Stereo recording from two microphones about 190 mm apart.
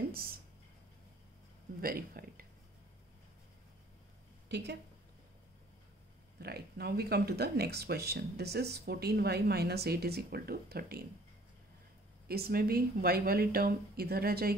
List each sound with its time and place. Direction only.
0.1 s a sound: 50° right (ahead or behind)
1.8 s speech: 50° right (ahead or behind)
4.5 s a woman's voice: 65° right (ahead or behind)
6.4 s speech: 55° right (ahead or behind)
12.3 s speech: 55° right (ahead or behind)